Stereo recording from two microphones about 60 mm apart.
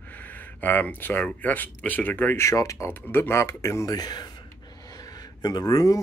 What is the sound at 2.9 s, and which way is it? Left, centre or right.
Speech, left.